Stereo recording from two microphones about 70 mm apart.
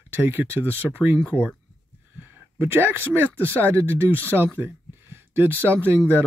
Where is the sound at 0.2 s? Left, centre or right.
Right.